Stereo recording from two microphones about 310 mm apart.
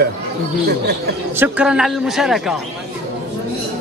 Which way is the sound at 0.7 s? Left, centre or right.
Right.